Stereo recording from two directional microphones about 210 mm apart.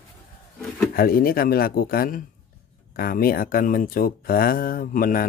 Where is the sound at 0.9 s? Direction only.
45° left (ahead or behind).